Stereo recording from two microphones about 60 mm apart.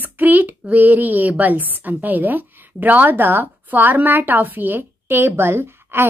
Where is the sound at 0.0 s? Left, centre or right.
Right.